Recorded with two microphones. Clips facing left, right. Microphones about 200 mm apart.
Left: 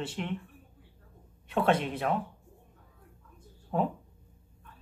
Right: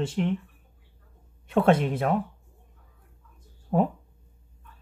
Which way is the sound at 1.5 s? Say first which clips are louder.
Right 6 dB; 45° right (ahead or behind).